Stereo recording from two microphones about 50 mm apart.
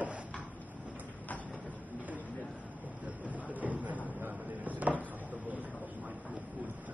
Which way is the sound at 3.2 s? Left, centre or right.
Right.